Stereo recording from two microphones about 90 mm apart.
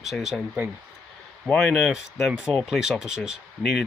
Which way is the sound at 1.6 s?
Centre (ahead or behind).